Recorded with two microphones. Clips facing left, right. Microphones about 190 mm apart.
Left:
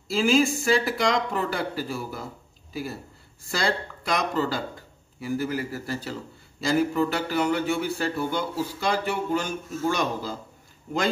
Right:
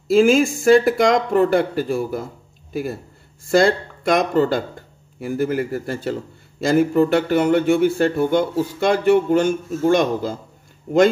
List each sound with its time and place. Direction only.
0.1 s a man's voice: 55° right (ahead or behind)